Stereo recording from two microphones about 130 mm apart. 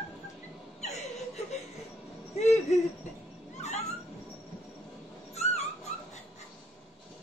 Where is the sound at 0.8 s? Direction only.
60° left (ahead or behind).